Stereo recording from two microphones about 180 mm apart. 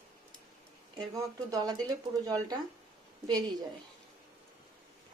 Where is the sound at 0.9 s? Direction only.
20° right (ahead or behind).